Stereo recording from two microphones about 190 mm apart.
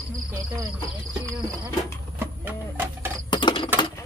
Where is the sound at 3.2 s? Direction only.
25° left (ahead or behind).